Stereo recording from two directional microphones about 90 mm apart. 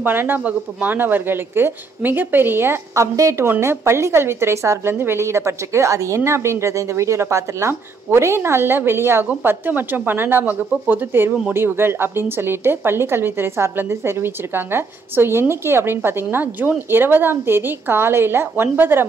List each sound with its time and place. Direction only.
0.0 s a woman's voice: 20° right (ahead or behind)